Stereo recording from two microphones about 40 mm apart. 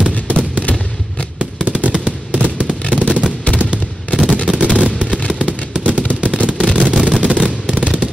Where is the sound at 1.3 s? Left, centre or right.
Right.